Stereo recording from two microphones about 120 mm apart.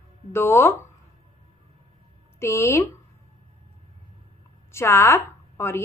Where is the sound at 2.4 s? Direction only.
25° left (ahead or behind).